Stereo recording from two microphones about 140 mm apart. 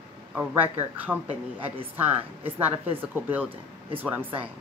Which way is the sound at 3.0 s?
15° right (ahead or behind).